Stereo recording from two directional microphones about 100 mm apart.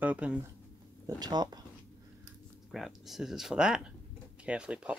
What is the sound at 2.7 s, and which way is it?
Speech, centre (ahead or behind).